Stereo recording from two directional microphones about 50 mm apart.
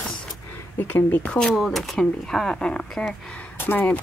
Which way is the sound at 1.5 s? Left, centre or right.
Centre.